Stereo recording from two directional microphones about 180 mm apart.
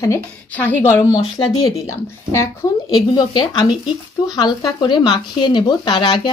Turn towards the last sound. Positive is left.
turn(degrees=25)  # may be behind; listen again after turning